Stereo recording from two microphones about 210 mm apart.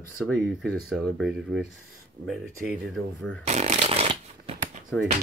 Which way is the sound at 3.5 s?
30° right (ahead or behind).